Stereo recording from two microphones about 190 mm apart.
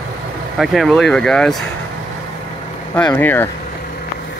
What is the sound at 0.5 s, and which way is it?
Speech, centre (ahead or behind).